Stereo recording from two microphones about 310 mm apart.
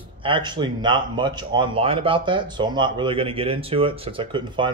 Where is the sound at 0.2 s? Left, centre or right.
Centre.